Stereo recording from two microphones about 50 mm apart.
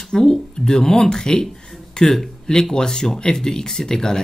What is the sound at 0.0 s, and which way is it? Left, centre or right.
Speech, centre.